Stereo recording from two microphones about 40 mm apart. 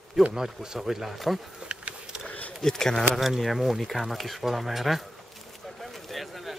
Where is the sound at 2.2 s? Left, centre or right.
Left.